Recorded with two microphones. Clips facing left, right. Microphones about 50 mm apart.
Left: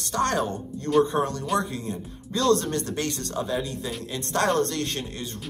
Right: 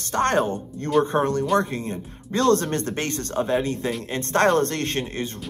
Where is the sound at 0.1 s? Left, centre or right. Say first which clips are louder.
Right 4 dB; right.